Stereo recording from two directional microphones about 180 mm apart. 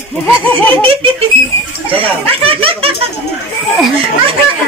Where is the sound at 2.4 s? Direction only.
30° right (ahead or behind).